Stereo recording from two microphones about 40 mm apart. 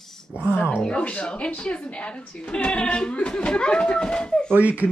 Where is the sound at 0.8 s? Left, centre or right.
Left.